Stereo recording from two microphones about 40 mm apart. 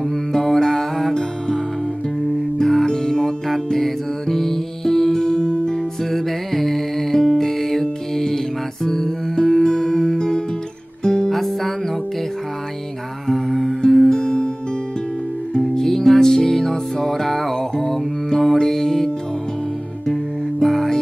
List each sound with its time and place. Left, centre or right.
0.1 s music: centre
2.6 s music: centre
6.0 s music: centre
13.3 s music: centre
14.0 s music: centre
15.5 s music: centre
20.6 s music: centre